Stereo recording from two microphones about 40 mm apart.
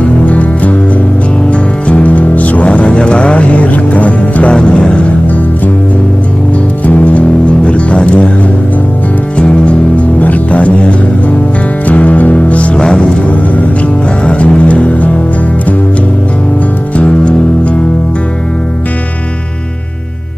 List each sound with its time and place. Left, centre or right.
0.3 s music: left
6.9 s music: left
9.4 s music: left
14.2 s music: left
17.0 s music: left